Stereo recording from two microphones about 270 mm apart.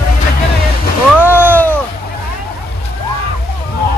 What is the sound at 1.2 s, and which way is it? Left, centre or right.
Cat, centre.